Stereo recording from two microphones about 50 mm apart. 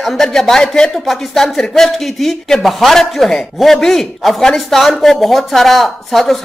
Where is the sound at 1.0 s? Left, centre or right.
Centre.